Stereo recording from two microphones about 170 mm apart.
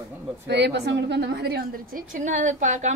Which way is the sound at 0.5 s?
80° right.